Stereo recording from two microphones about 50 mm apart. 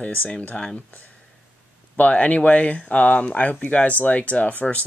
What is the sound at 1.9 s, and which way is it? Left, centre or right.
Speech, left.